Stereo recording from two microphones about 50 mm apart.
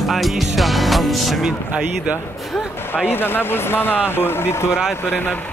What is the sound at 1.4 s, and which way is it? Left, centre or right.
Speech, right.